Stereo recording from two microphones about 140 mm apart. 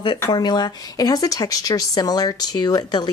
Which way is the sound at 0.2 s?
30° left (ahead or behind).